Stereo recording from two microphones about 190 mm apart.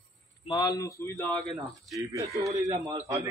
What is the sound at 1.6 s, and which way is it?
Speech, centre (ahead or behind).